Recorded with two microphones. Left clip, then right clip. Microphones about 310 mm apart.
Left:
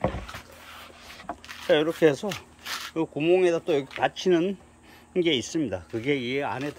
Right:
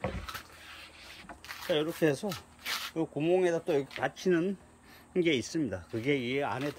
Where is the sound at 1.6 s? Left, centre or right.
Centre.